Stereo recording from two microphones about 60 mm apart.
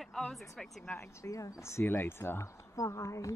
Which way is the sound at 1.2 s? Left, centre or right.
Left.